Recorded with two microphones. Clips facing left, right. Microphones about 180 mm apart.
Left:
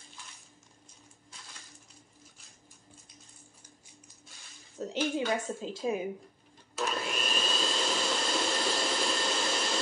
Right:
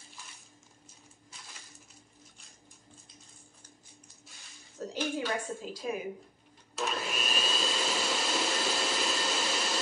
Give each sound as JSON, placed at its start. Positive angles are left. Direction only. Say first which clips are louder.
{"t": 4.8, "sound": "a woman's voice", "louder": "left 3 dB", "side_deg": 25}
{"t": 6.8, "sound": "vacuum cleaner", "louder": "left 1 dB", "side_deg": -5}